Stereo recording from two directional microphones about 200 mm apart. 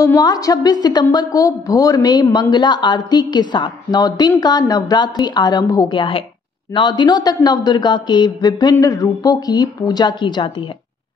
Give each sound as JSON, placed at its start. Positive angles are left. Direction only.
{"t": 0.0, "sound": "a woman's voice", "side_deg": 15}